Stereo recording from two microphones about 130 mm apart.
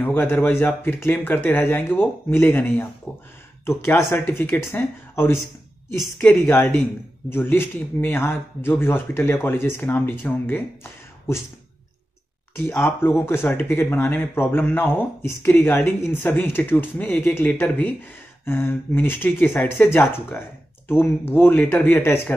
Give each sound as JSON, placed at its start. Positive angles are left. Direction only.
{"t": 0.0, "sound": "speech", "side_deg": 15}
{"t": 12.6, "sound": "speech", "side_deg": 20}